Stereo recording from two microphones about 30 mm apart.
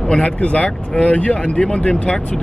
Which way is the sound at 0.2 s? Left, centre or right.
Left.